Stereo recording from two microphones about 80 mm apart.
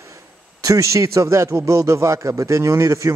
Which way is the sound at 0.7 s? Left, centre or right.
Right.